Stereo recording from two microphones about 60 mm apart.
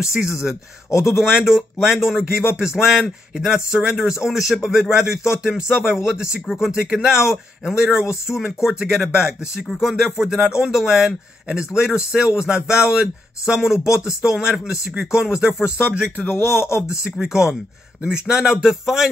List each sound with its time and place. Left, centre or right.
0.1 s a man's voice: centre
16.3 s speech: left
17.0 s speech: centre